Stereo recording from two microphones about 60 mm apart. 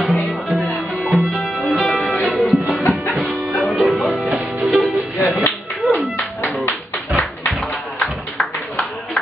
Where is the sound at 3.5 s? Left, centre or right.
Centre.